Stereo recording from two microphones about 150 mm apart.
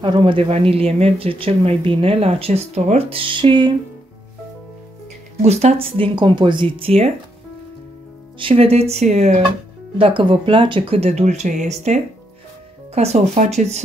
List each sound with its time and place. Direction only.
0.0 s speech: 35° right (ahead or behind)
5.4 s speech: 45° right (ahead or behind)
8.4 s speech: 40° right (ahead or behind)
9.9 s speech: 35° right (ahead or behind)